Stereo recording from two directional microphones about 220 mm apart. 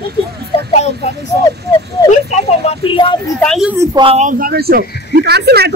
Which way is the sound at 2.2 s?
25° left (ahead or behind).